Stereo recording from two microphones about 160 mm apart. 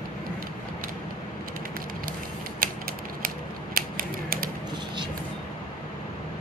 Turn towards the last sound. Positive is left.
turn(degrees=-65)  # may be behind; listen again after turning